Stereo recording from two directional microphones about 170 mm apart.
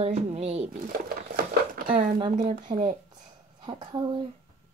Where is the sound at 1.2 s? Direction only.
55° right (ahead or behind).